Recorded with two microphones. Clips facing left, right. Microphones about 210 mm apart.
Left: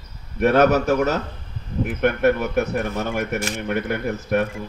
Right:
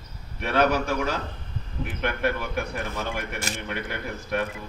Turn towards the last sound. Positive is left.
turn(degrees=45)  # may be behind; listen again after turning